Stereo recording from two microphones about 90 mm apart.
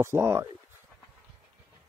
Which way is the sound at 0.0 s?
30° right (ahead or behind).